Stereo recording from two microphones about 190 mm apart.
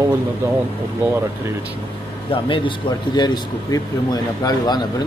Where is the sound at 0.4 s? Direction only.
15° right (ahead or behind).